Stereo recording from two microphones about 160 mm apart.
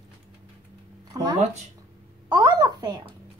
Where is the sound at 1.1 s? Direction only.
20° right (ahead or behind).